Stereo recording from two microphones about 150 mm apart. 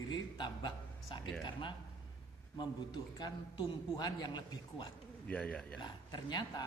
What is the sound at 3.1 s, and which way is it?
A man's voice, 25° left (ahead or behind).